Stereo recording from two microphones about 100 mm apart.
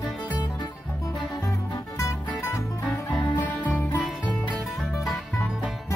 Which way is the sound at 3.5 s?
15° left (ahead or behind).